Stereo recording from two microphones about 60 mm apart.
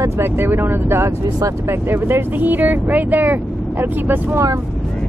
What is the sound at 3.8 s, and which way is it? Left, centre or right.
Speech, right.